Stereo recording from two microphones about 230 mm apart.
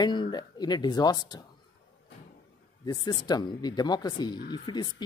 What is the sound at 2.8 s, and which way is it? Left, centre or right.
Speech, centre.